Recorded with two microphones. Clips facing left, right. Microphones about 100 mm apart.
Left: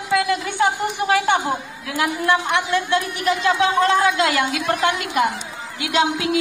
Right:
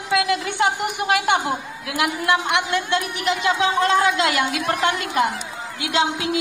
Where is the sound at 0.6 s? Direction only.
15° right (ahead or behind).